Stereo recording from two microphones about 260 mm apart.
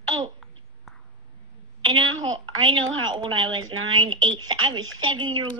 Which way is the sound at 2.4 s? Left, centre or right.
Centre.